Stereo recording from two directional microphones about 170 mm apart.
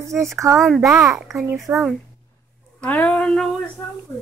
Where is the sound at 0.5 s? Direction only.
Centre (ahead or behind).